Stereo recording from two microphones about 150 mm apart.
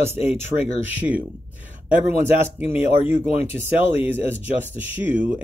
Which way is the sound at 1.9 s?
15° right (ahead or behind).